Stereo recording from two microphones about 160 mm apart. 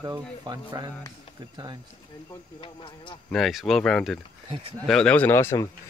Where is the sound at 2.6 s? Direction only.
30° left (ahead or behind).